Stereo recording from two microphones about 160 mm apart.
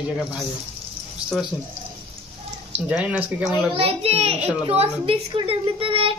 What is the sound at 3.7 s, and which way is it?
A child's voice, 35° right (ahead or behind).